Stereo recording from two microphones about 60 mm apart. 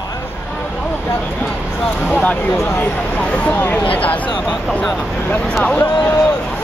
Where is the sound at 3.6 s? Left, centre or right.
Left.